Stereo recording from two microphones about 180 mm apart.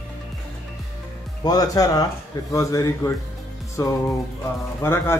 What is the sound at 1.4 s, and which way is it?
Speech, 20° left (ahead or behind).